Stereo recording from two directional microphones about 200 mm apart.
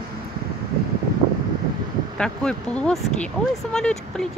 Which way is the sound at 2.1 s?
5° left (ahead or behind).